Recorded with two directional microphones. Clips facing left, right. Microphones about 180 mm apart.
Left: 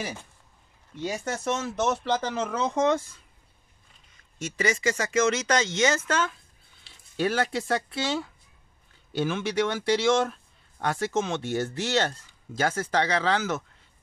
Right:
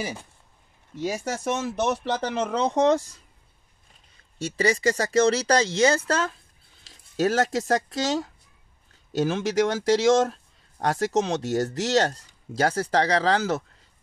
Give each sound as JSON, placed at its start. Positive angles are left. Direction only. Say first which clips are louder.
{"t": 0.9, "sound": "speech", "louder": "right 2 dB", "side_deg": -10}
{"t": 2.7, "sound": "speech", "louder": "right 3 dB", "side_deg": -35}
{"t": 4.4, "sound": "speech", "louder": "right 4 dB", "side_deg": -35}